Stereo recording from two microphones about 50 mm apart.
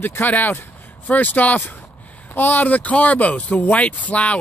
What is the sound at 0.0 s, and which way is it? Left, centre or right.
A man's voice, left.